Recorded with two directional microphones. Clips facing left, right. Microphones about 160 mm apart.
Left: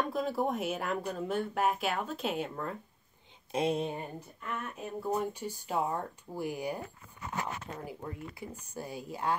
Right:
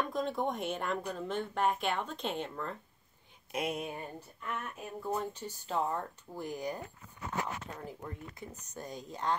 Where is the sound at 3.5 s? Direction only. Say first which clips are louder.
Left 5 dB; 30° left (ahead or behind).